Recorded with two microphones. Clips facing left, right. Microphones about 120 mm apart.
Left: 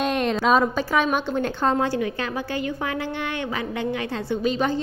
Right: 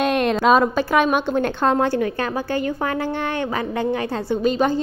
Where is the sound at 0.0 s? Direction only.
65° right (ahead or behind).